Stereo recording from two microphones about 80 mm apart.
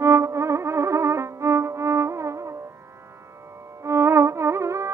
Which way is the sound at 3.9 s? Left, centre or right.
Right.